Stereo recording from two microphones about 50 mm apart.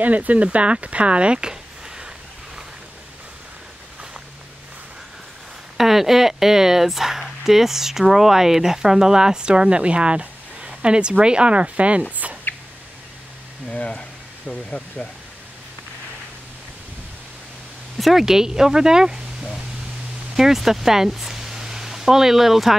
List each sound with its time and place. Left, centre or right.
0.0 s speech: right; by 2.0 s centre
5.8 s speech: centre; by 12.4 s right
13.7 s speech: left
17.9 s speech: centre
18.2 s speech: centre
20.3 s speech: centre